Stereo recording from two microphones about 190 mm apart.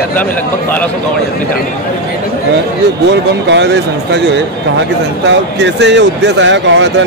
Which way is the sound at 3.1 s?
70° right (ahead or behind).